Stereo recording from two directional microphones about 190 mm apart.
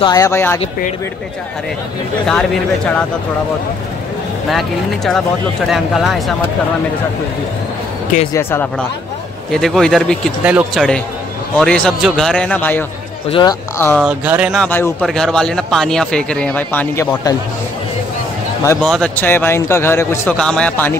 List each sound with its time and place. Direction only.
0.0 s a man's voice: 20° left (ahead or behind)
4.5 s speech: centre (ahead or behind)
8.3 s a man's voice: 10° left (ahead or behind)
13.3 s speech: 25° left (ahead or behind)
13.7 s a man's voice: 10° left (ahead or behind)
14.0 s speech: 10° right (ahead or behind)
14.6 s speech: 10° left (ahead or behind)
18.8 s a man's voice: 5° left (ahead or behind)